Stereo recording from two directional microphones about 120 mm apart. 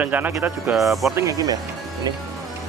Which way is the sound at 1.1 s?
30° right (ahead or behind).